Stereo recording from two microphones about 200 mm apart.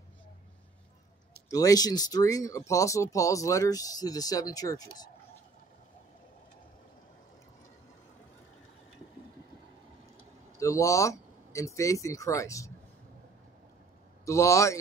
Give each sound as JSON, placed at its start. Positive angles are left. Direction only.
{"t": 1.5, "sound": "speech", "side_deg": 15}
{"t": 10.6, "sound": "speech", "side_deg": 15}
{"t": 14.2, "sound": "speech", "side_deg": 15}